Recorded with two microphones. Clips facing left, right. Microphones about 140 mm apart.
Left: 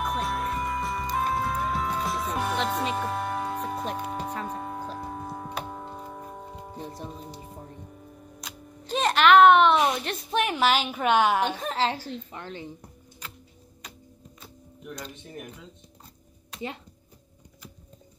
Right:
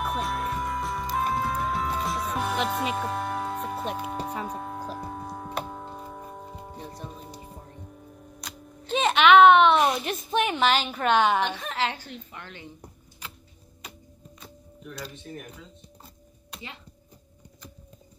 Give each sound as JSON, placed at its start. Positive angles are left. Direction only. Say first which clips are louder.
{"t": 0.0, "sound": "music", "louder": "even", "side_deg": 0}
{"t": 11.5, "sound": "a woman's voice", "louder": "left 2 dB", "side_deg": 35}
{"t": 13.8, "sound": "music", "louder": "right 2 dB", "side_deg": -5}